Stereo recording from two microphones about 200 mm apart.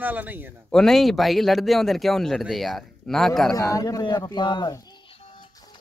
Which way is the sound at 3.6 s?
15° left (ahead or behind).